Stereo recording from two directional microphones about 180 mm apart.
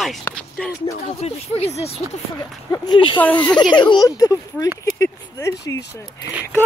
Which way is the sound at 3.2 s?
10° left (ahead or behind).